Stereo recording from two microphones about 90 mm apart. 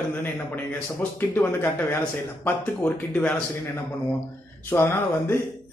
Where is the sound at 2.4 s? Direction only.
20° left (ahead or behind).